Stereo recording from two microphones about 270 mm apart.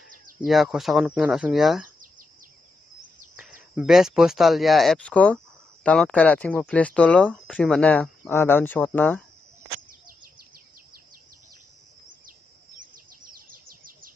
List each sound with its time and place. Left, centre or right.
0.5 s speech: centre
3.7 s speech: centre
12.3 s bird: right